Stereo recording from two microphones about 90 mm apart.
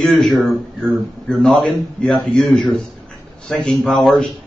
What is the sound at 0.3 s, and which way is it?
Speech, centre (ahead or behind).